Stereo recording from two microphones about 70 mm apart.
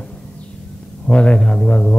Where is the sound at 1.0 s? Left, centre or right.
Centre.